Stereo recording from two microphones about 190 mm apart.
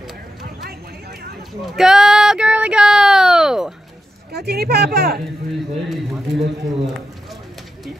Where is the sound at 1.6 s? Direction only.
Centre (ahead or behind).